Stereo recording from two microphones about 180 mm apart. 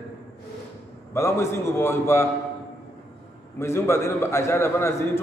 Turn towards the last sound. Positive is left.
turn(degrees=15)  # may be behind; listen again after turning